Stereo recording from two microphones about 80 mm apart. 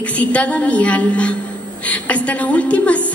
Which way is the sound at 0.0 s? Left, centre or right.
Centre.